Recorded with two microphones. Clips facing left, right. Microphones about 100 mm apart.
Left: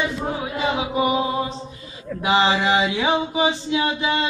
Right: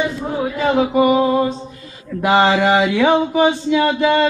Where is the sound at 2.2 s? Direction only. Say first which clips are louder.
Right 5 dB; 50° right (ahead or behind).